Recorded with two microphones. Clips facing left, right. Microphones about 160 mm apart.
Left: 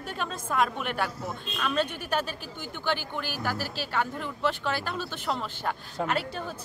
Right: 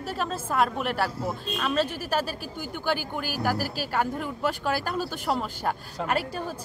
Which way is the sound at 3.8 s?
45° right (ahead or behind).